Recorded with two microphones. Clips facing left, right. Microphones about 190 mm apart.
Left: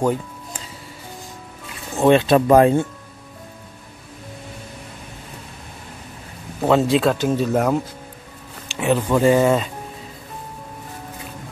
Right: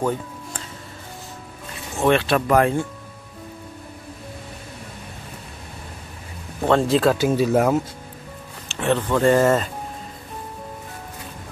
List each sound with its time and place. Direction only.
2.0 s speech: 20° left (ahead or behind)
6.6 s speech: 5° left (ahead or behind)
8.7 s speech: 10° left (ahead or behind)